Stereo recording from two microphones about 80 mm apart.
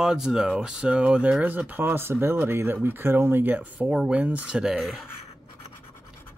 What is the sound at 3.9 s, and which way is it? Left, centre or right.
Speech, centre.